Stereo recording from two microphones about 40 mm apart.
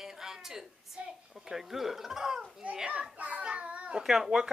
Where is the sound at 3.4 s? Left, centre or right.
Right.